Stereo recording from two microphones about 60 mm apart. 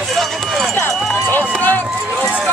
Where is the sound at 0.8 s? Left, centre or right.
Left.